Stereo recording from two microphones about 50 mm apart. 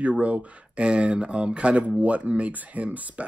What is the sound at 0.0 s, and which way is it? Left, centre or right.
Speech, right.